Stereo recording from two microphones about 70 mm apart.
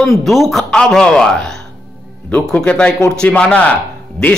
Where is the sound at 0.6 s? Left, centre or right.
Centre.